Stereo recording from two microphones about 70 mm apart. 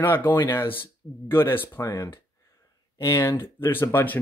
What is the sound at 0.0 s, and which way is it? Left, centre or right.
Speech, left.